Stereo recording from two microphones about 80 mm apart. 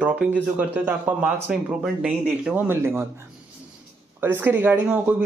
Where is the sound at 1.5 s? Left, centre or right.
Centre.